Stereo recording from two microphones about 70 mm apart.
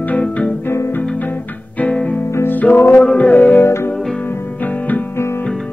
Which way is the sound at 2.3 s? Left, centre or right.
Left.